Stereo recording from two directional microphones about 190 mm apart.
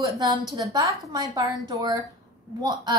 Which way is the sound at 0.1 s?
15° right (ahead or behind).